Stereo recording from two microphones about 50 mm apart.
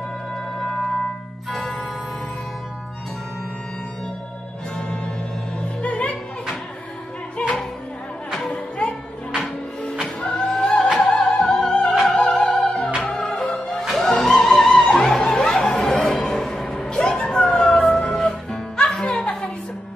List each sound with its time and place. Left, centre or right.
0.6 s music: centre
1.5 s organ: centre
4.7 s music: centre
7.3 s music: left
9.3 s music: centre
10.2 s music: left
10.5 s music: centre
12.2 s opera: left
12.5 s music: centre